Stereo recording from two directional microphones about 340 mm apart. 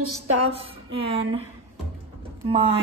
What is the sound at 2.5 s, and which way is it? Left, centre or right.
Speech, centre.